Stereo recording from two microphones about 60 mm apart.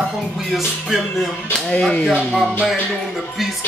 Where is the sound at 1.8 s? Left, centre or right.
Centre.